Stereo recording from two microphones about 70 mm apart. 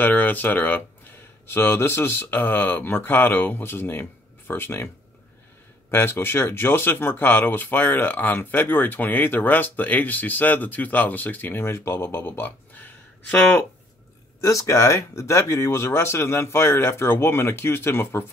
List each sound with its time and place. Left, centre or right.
0.0 s speech: left
5.9 s speech: left
14.4 s speech: left